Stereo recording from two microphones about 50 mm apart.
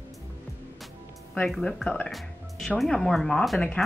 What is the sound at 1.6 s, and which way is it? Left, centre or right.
Speech, centre.